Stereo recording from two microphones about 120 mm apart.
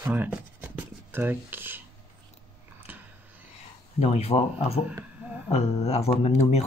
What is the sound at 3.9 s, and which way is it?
Speech, 65° left (ahead or behind).